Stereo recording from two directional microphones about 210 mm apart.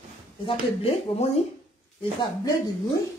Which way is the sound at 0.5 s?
30° left (ahead or behind).